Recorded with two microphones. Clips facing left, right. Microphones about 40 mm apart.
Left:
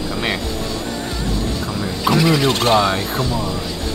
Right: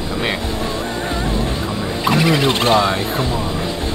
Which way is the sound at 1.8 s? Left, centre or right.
Centre.